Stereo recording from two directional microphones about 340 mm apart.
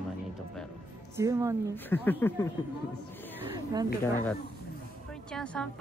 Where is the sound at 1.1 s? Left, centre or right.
Centre.